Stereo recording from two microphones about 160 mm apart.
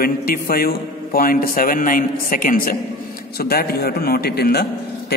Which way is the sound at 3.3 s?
75° left (ahead or behind).